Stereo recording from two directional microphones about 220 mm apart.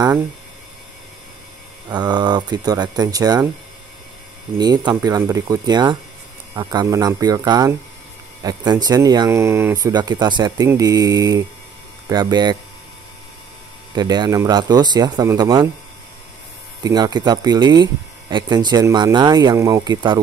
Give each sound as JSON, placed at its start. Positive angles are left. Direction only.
{"t": 1.9, "sound": "speech", "side_deg": -20}
{"t": 4.6, "sound": "speech", "side_deg": -20}
{"t": 13.9, "sound": "speech", "side_deg": -20}
{"t": 16.8, "sound": "speech", "side_deg": -20}